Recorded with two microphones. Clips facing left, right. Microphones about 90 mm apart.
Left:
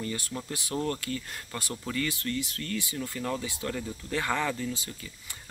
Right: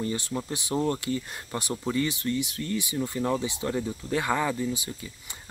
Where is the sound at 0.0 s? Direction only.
20° right (ahead or behind).